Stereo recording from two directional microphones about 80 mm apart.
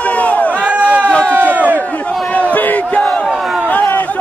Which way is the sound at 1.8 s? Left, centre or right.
Centre.